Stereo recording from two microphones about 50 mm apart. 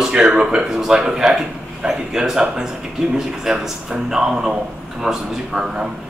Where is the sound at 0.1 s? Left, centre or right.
Centre.